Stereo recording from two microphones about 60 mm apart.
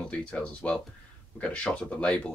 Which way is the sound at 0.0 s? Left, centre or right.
Centre.